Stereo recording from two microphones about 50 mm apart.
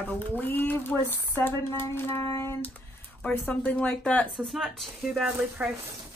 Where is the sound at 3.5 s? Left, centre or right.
Left.